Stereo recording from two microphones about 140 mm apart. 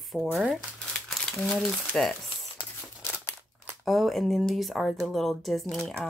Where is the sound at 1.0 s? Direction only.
5° left (ahead or behind).